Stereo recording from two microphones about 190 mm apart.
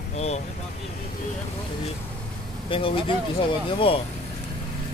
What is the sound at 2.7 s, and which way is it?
Speech, 30° left (ahead or behind).